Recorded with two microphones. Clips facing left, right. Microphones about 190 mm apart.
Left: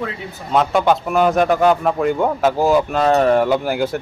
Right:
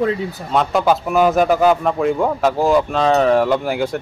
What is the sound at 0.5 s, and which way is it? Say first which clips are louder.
A man's voice: left 1 dB; centre (ahead or behind).